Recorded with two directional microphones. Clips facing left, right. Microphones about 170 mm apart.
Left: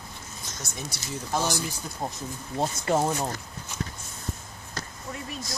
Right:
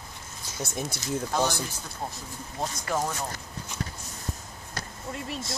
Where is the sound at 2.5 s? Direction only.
30° left (ahead or behind).